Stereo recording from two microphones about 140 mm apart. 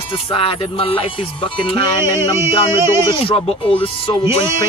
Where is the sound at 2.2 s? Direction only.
20° right (ahead or behind).